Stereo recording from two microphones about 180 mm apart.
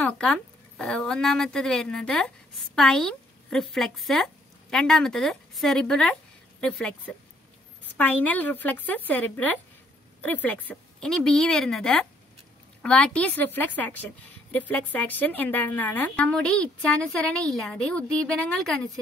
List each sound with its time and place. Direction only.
0.0 s a woman's voice: 5° left (ahead or behind)